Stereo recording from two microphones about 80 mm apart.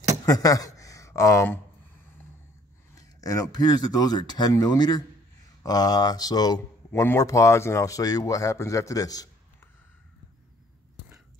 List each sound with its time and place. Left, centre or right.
0.2 s a sound: left
2.9 s speech: left
6.9 s speech: left
7.2 s speech: left